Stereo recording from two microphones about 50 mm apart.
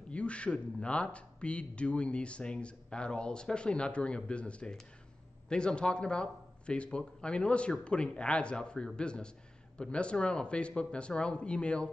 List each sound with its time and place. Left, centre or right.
0.1 s speech: left